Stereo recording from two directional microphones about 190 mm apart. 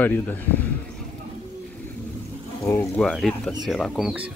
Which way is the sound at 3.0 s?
Centre (ahead or behind).